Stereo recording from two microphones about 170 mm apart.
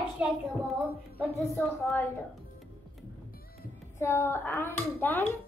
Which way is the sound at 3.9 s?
15° left (ahead or behind).